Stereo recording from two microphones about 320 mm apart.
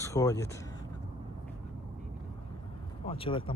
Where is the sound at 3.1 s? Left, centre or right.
Centre.